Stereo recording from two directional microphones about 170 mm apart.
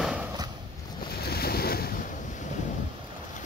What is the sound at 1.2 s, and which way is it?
Boat, 65° left (ahead or behind).